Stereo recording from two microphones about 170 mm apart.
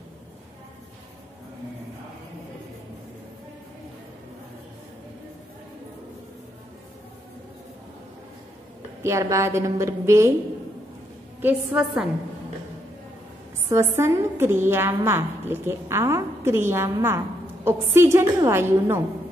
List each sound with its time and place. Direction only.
9.0 s a woman's voice: 15° right (ahead or behind)
11.4 s a woman's voice: 5° right (ahead or behind)
13.7 s a woman's voice: 15° right (ahead or behind)